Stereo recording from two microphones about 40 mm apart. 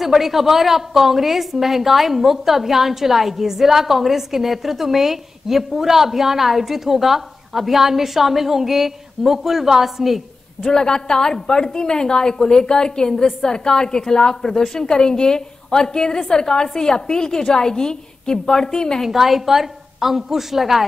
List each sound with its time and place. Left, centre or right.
0.0 s a woman's voice: centre
10.6 s a woman's voice: centre
19.0 s a woman's voice: centre